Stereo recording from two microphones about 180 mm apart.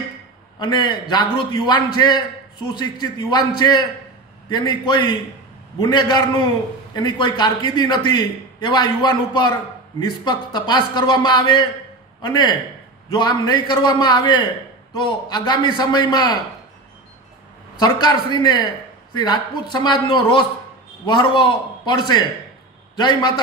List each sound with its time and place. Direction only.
0.6 s a man's voice: 25° left (ahead or behind)
17.7 s a man's voice: 25° left (ahead or behind)